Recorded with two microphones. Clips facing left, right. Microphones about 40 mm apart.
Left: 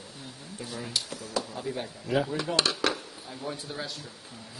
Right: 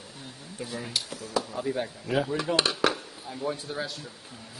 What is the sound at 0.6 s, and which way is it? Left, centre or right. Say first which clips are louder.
A man's voice: right 1 dB; centre.